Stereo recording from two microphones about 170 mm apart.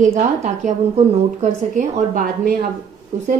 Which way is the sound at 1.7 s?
55° right (ahead or behind).